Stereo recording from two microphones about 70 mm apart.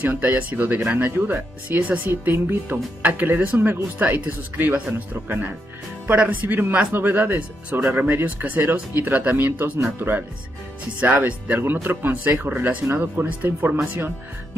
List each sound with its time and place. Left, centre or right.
0.0 s speech: right